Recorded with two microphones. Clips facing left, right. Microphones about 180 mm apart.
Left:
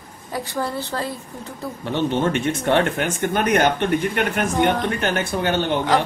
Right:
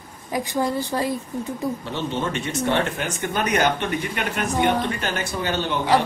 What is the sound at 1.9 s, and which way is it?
A man's voice, 55° left (ahead or behind).